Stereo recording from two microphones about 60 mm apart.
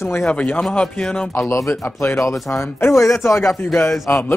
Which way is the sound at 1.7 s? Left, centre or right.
Left.